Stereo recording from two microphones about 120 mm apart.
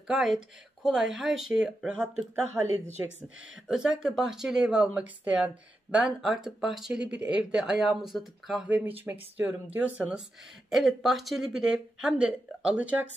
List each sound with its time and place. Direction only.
0.1 s speech: 5° right (ahead or behind)
2.4 s speech: 20° right (ahead or behind)
3.6 s speech: 5° right (ahead or behind)
8.6 s speech: 15° right (ahead or behind)